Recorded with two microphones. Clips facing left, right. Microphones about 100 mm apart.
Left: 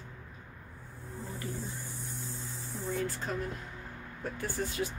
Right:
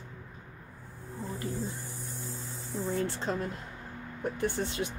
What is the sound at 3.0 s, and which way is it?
Speech, 30° right (ahead or behind).